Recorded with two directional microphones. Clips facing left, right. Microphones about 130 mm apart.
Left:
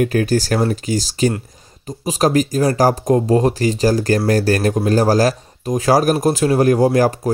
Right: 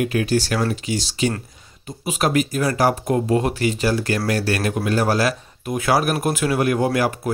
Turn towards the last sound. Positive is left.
turn(degrees=35)  # may be behind; listen again after turning